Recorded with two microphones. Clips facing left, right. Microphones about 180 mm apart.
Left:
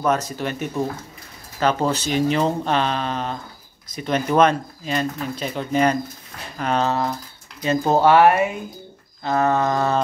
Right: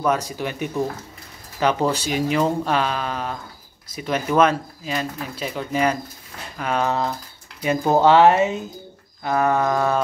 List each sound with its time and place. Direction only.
0.0 s speech: 10° right (ahead or behind)